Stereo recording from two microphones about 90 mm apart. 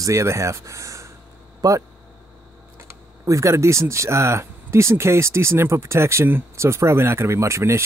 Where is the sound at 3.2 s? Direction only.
35° right (ahead or behind).